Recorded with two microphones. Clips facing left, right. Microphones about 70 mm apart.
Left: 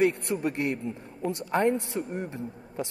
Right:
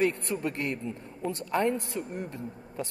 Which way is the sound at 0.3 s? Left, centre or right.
Centre.